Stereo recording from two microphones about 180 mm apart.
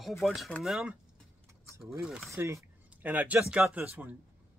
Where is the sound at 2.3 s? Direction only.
15° right (ahead or behind).